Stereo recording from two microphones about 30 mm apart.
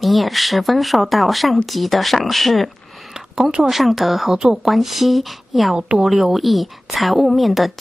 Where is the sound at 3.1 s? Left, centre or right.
Right.